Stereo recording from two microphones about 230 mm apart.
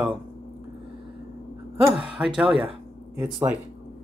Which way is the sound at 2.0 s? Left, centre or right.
Centre.